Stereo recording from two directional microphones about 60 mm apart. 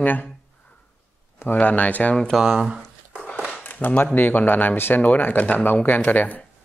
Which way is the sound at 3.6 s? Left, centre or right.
Left.